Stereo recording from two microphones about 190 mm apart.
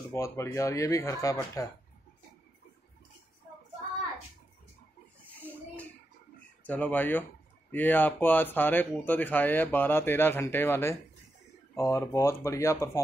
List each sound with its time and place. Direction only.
0.1 s speech: 15° left (ahead or behind)
6.6 s speech: 10° left (ahead or behind)